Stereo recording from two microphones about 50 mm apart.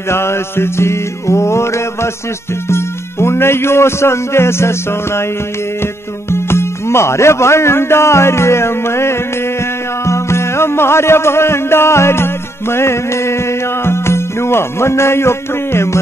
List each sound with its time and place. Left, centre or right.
0.1 s music: left
6.3 s speech: left
10.0 s music: left